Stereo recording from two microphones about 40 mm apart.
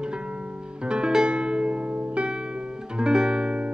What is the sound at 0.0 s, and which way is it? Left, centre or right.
Music, right.